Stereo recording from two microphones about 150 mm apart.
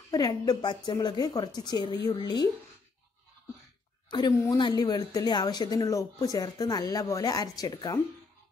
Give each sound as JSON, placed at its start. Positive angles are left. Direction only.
{"t": 0.1, "sound": "speech", "side_deg": 25}
{"t": 4.1, "sound": "a woman's voice", "side_deg": 30}